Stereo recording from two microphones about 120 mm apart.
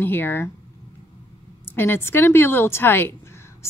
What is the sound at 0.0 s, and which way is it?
Speech, 20° left (ahead or behind).